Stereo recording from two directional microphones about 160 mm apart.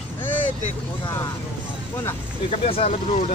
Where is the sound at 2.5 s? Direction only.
40° left (ahead or behind).